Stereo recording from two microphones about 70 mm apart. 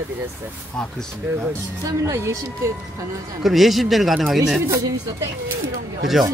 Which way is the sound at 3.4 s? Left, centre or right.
Centre.